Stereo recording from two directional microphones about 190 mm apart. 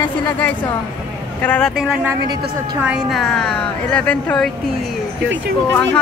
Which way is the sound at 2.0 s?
20° right (ahead or behind).